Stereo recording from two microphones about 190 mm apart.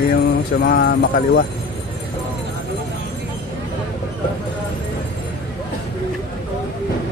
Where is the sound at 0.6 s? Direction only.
55° left (ahead or behind).